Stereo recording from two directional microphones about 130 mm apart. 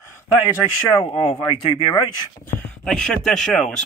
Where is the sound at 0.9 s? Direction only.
40° left (ahead or behind).